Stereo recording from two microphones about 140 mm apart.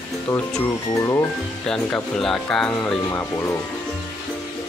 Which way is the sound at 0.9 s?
25° left (ahead or behind).